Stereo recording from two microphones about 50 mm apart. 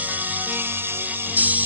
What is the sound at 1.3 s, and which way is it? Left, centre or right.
Music, right.